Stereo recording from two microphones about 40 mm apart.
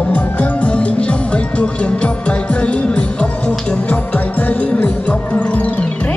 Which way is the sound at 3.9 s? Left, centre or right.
Left.